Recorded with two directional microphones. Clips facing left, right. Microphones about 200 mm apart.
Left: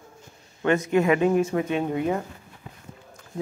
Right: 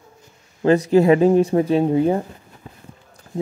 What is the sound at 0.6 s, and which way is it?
Speech, 35° right (ahead or behind).